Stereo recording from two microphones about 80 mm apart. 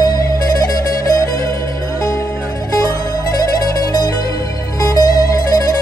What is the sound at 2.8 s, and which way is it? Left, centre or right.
Music, left.